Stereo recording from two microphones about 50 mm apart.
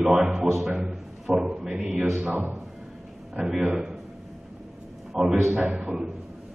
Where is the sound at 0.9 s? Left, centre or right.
Centre.